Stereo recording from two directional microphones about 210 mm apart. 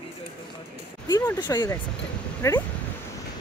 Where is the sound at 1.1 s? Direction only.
20° left (ahead or behind).